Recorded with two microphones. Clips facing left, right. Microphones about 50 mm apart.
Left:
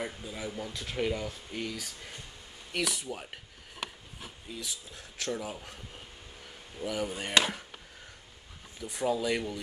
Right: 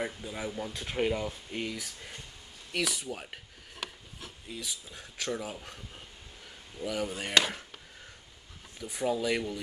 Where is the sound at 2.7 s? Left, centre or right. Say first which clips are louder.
Even; centre.